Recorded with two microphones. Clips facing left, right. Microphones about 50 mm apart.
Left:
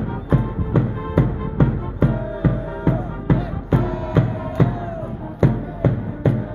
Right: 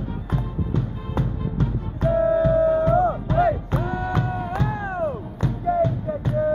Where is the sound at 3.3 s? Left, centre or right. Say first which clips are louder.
Right 1 dB; left.